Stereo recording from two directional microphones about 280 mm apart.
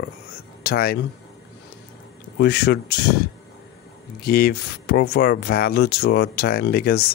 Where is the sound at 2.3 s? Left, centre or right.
Left.